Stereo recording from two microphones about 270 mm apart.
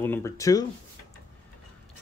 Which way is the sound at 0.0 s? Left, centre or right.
Centre.